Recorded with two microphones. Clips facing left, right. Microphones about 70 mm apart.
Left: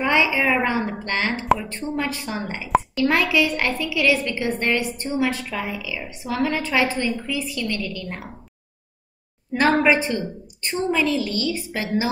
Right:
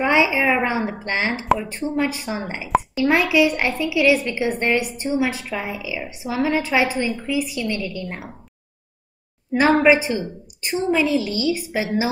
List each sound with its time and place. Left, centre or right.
0.0 s a woman's voice: centre
1.4 s a woman's voice: centre
2.0 s a woman's voice: centre
3.1 s a woman's voice: centre
9.6 s a woman's voice: centre